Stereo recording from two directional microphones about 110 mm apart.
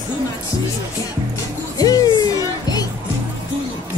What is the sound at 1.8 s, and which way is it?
Music, 35° left (ahead or behind).